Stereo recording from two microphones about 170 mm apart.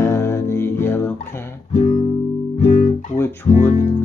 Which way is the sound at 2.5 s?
45° left (ahead or behind).